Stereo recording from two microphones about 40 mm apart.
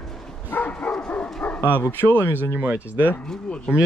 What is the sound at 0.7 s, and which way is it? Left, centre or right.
Dog, left.